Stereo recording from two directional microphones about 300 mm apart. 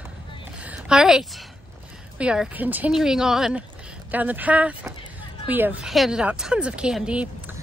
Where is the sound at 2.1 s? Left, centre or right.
Centre.